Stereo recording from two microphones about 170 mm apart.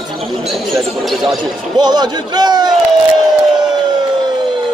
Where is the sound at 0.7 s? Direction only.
Centre (ahead or behind).